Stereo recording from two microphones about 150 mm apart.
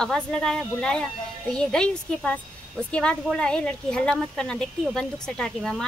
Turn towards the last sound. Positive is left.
turn(degrees=5)  # may be behind; listen again after turning